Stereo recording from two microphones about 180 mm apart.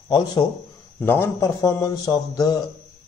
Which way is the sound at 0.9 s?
10° left (ahead or behind).